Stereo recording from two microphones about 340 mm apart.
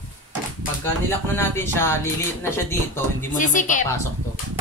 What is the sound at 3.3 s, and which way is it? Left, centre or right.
Speech, left.